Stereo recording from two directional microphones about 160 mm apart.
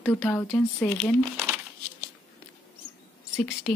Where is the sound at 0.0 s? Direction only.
10° left (ahead or behind).